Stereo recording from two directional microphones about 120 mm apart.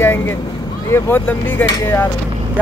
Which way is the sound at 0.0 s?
20° left (ahead or behind).